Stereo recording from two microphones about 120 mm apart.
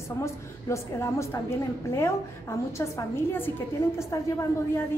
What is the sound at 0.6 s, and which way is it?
A woman's voice, 25° left (ahead or behind).